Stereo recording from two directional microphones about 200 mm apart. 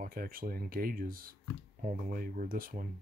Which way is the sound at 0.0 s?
45° right (ahead or behind).